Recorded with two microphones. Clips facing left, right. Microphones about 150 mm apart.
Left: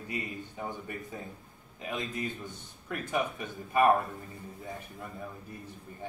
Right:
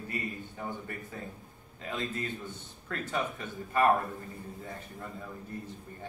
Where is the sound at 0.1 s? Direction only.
15° left (ahead or behind).